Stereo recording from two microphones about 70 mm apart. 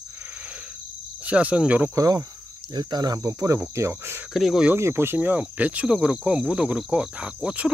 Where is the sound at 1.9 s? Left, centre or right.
Right.